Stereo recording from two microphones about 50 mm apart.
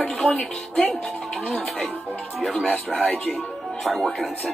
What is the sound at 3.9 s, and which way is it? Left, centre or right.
Speech, centre.